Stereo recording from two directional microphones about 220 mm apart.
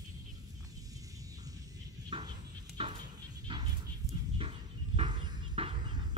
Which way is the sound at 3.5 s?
20° right (ahead or behind).